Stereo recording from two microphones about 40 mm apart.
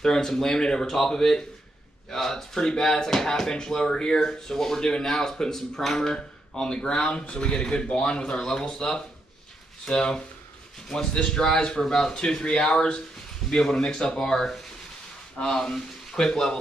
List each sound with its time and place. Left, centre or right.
0.0 s speech: centre
11.2 s speech: centre
15.3 s speech: left